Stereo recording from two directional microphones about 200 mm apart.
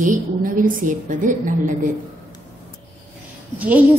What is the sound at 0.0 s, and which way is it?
A woman's voice, 40° right (ahead or behind).